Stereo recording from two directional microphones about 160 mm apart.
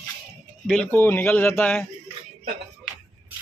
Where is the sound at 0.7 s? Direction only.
10° left (ahead or behind).